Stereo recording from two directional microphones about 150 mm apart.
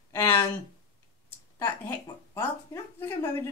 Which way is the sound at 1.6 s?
25° left (ahead or behind).